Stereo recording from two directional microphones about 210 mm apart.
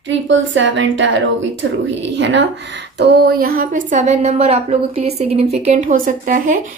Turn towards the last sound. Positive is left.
turn(degrees=-40)  # may be behind; listen again after turning